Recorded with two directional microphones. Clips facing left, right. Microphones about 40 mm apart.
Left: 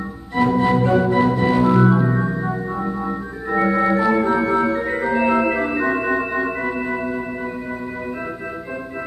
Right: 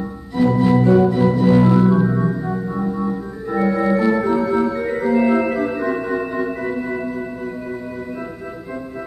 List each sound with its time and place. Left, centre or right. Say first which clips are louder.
0.3 s music: right 1 dB; left
1.4 s organ: right 2 dB; left
1.8 s organ: right 1 dB; left